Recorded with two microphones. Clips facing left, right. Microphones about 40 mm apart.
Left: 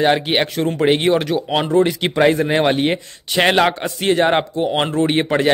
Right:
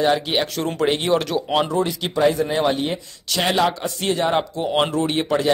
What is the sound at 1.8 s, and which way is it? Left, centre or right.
Speech, left.